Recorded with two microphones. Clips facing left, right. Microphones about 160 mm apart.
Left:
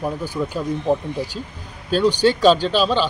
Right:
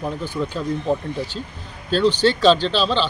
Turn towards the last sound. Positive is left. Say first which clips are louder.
# left 2 dB
turn(degrees=10)  # may be behind; listen again after turning